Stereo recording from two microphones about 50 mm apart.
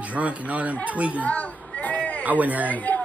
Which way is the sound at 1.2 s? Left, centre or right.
Left.